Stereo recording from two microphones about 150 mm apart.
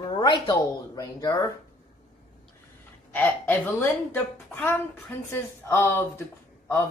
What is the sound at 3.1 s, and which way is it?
Speech, 10° left (ahead or behind).